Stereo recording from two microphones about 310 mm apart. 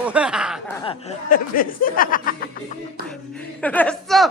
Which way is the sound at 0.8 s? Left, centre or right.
Left.